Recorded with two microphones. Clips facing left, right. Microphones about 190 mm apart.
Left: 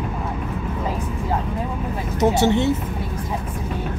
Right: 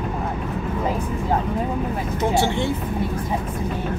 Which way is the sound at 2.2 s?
20° left (ahead or behind).